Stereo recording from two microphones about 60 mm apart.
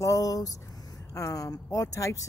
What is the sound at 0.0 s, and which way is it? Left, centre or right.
Speech, left.